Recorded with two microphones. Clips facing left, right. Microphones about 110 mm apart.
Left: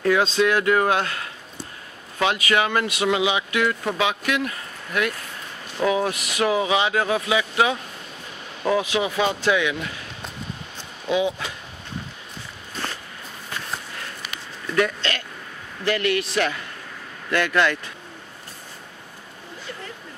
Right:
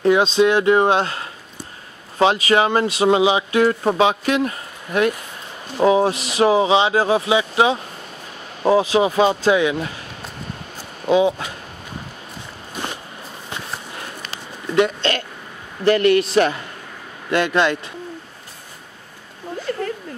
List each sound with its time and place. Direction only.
0.0 s speech: 20° right (ahead or behind)
11.1 s speech: 30° right (ahead or behind)
12.7 s walk: 15° right (ahead or behind)
14.3 s a sound: 20° right (ahead or behind)
15.8 s speech: 40° right (ahead or behind); by 17.7 s 25° right (ahead or behind)
19.7 s a sound: 60° right (ahead or behind)